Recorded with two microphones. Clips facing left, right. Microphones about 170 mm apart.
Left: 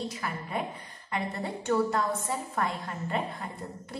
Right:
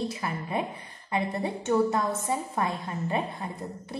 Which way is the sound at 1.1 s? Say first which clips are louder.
Right 4 dB; 20° right (ahead or behind).